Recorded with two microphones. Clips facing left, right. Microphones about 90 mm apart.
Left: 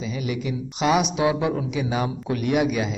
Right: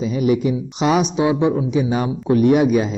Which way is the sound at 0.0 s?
40° right (ahead or behind).